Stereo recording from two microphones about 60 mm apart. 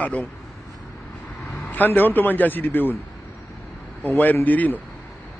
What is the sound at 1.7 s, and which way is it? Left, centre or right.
A man's voice, left.